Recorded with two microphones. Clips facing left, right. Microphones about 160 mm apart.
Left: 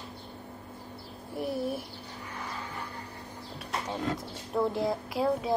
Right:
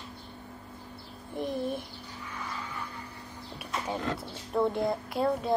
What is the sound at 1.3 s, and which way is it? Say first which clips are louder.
Speech: even; 5° left (ahead or behind).